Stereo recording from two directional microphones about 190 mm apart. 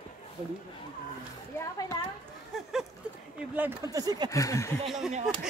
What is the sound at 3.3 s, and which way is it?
Speech, 10° right (ahead or behind).